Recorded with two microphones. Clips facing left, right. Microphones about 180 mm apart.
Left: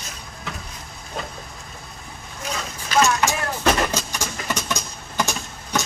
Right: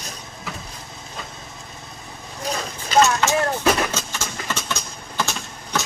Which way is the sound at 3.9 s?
15° left (ahead or behind).